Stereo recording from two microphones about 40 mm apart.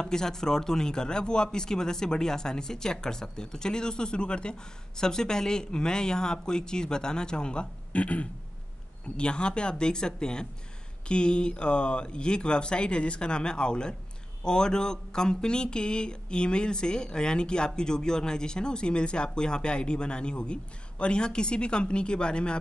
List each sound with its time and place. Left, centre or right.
0.0 s speech: centre